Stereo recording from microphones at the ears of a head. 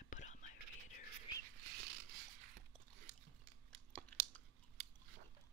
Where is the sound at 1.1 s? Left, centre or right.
Right.